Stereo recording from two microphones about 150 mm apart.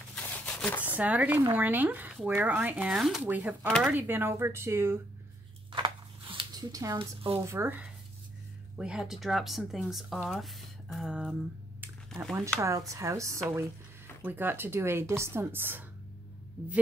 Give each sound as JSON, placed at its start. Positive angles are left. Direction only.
{"t": 0.1, "sound": "a sound", "side_deg": 5}
{"t": 0.8, "sound": "a woman's voice", "side_deg": -10}
{"t": 3.6, "sound": "speech", "side_deg": 5}
{"t": 3.9, "sound": "a woman's voice", "side_deg": -15}
{"t": 5.7, "sound": "a sound", "side_deg": -35}
{"t": 7.3, "sound": "a woman's voice", "side_deg": -15}
{"t": 8.7, "sound": "speech", "side_deg": -5}
{"t": 12.5, "sound": "a woman's voice", "side_deg": -20}